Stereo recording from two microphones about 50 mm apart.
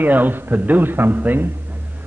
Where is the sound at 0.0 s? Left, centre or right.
Right.